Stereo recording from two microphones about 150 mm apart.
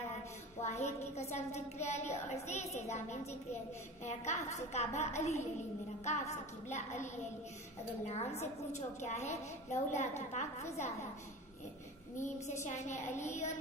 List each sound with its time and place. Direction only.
0.6 s a woman's voice: 45° left (ahead or behind)
8.1 s a woman's voice: 45° left (ahead or behind)
12.2 s a woman's voice: 50° left (ahead or behind)